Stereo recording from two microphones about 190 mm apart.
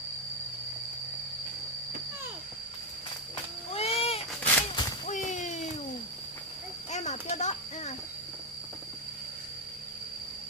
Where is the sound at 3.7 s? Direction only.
30° left (ahead or behind).